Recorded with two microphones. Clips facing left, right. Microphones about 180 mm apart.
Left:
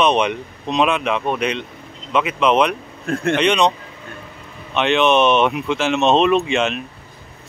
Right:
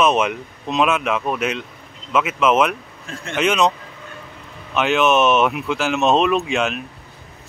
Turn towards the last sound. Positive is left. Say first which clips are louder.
# left 2 dB
turn(degrees=0)  # may be behind; listen again after turning